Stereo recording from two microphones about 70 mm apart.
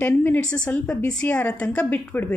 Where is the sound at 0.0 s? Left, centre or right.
Left.